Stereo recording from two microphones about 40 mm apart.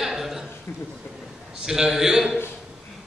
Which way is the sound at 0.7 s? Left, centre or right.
Left.